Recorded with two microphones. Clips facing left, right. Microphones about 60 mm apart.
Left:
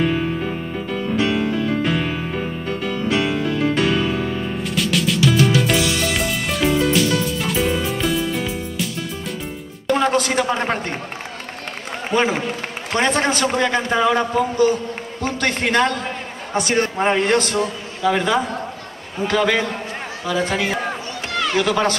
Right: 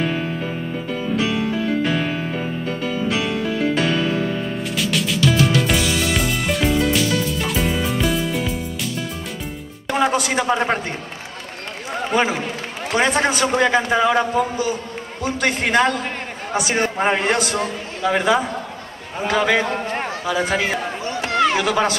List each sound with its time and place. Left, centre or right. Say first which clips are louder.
0.0 s music: left 3 dB; centre
9.8 s a sound: left 1 dB; centre
12.9 s a man's voice: even; centre